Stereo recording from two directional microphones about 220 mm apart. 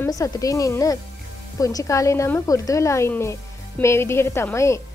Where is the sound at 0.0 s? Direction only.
15° left (ahead or behind).